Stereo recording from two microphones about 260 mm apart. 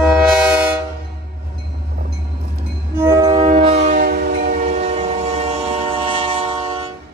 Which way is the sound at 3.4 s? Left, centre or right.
Right.